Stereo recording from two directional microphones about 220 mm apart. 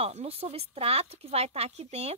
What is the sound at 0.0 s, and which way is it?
Speech, 30° right (ahead or behind).